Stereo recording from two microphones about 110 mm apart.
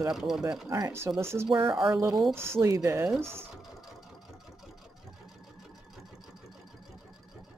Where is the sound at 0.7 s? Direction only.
25° right (ahead or behind).